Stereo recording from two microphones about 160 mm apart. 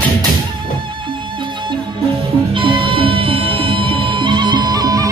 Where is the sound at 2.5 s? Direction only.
35° right (ahead or behind).